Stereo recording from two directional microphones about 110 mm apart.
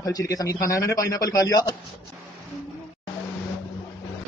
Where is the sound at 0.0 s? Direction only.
30° left (ahead or behind).